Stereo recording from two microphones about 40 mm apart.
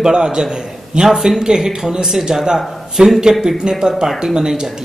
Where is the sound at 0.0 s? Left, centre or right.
Right.